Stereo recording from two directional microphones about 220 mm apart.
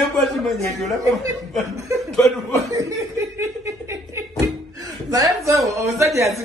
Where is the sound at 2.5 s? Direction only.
15° right (ahead or behind).